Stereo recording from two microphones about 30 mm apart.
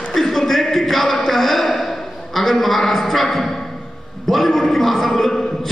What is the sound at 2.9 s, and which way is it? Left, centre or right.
A woman's voice, centre.